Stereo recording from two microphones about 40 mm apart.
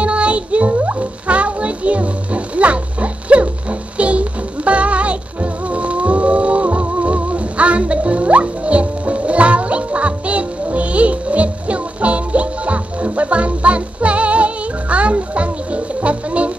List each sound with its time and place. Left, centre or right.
0.0 s music: right